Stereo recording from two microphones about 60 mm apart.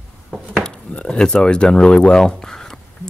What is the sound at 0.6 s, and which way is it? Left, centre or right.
Speech, centre.